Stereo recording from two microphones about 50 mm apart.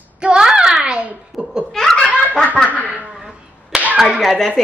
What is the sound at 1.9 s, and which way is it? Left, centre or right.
Laughter, centre.